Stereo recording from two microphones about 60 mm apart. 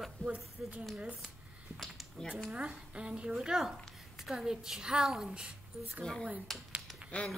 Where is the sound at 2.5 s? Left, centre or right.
Centre.